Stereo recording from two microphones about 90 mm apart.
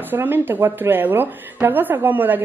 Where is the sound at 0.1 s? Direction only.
25° right (ahead or behind).